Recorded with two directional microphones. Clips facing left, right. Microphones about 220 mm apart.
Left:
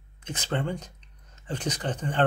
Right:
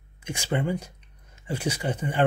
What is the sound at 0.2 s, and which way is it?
Speech, 10° right (ahead or behind).